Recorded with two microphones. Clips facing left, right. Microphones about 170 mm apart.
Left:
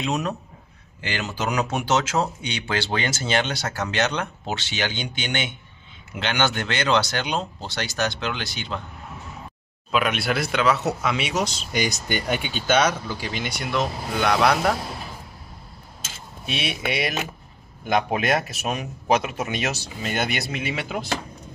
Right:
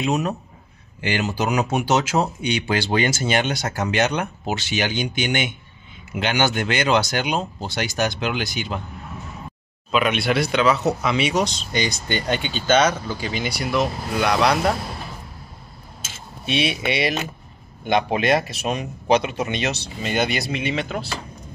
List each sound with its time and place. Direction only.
0.0 s speech: 10° right (ahead or behind)
9.8 s speech: centre (ahead or behind)
16.4 s speech: centre (ahead or behind)